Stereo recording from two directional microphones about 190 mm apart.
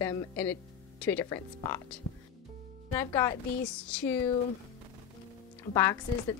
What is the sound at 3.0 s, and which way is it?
Speech, 15° left (ahead or behind).